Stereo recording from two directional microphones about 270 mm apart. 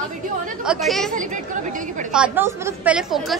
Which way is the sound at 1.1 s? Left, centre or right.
Right.